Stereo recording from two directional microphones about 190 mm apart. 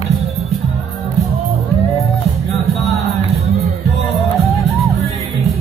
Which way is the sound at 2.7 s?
Centre (ahead or behind).